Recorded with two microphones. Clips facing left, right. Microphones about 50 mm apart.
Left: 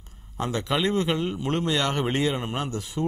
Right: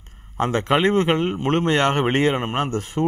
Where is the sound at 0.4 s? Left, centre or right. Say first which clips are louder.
Right 7 dB; right.